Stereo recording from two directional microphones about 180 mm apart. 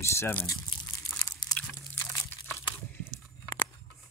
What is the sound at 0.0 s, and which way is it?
Speech, 15° left (ahead or behind).